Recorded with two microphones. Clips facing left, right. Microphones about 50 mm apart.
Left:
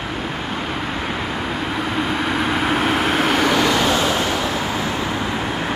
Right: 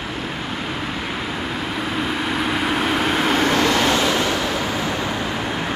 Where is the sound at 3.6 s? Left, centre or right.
Left.